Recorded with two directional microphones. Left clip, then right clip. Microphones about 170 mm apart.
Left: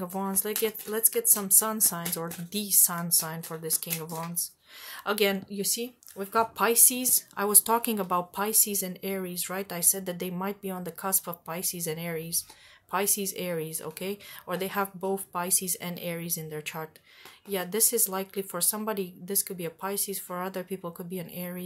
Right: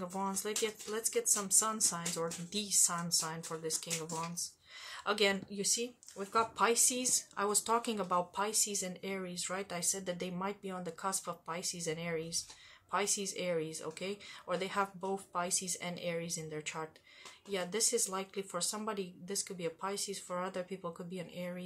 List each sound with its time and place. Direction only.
0.0 s speech: 50° left (ahead or behind)